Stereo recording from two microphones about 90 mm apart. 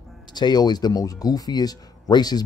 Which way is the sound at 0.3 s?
55° left (ahead or behind).